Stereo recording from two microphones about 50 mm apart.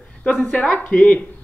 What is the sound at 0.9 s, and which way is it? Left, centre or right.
Speech, left.